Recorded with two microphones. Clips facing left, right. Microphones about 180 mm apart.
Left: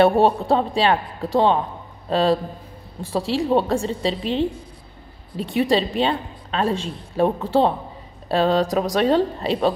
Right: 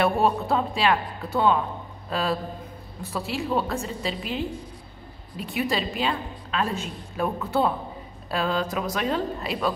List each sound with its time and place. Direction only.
0.0 s a woman's voice: 30° left (ahead or behind)